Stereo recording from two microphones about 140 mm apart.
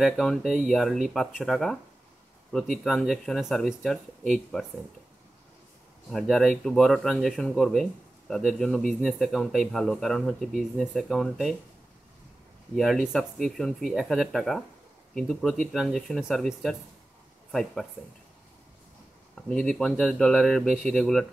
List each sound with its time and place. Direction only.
0.0 s speech: centre (ahead or behind)
6.0 s speech: centre (ahead or behind)
12.7 s speech: centre (ahead or behind)
19.3 s speech: 5° left (ahead or behind)